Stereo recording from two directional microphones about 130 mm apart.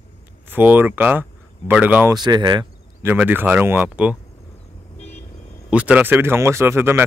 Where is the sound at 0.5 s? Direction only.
15° right (ahead or behind).